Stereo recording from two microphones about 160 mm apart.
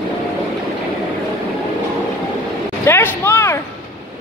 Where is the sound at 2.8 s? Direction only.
15° left (ahead or behind).